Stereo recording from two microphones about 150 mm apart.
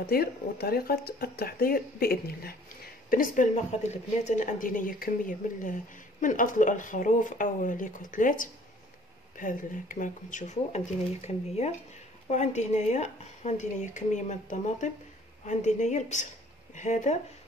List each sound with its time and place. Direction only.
0.0 s speech: 90° left
3.1 s a woman's voice: 60° left (ahead or behind)